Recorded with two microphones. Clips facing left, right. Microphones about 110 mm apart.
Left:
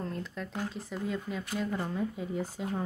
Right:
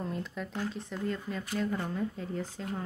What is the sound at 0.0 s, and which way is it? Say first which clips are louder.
Speech: right 1 dB; centre (ahead or behind).